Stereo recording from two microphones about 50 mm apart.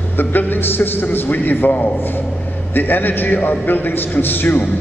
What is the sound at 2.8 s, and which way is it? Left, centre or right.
A man's voice, left.